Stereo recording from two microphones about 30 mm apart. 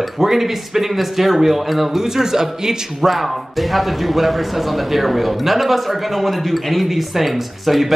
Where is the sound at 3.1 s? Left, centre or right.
Centre.